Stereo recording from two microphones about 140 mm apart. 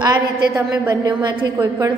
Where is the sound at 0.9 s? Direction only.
30° right (ahead or behind).